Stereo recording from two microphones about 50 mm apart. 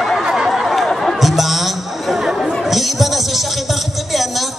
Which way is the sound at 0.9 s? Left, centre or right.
Centre.